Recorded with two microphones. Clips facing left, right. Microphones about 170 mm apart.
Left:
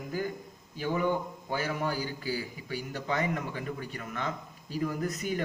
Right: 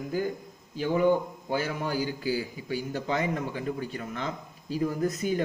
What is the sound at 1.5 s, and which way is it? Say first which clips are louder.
A man's voice: right 2 dB; 40° right (ahead or behind).